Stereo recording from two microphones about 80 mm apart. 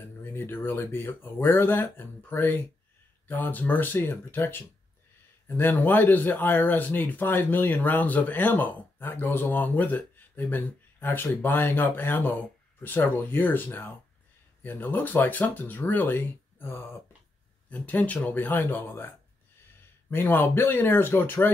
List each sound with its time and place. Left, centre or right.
0.2 s speech: left